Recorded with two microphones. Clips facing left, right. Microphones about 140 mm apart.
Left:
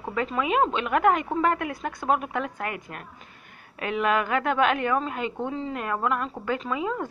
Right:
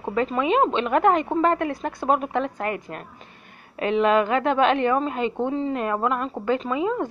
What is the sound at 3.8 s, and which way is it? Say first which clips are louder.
Speech: right 5 dB; 30° right (ahead or behind).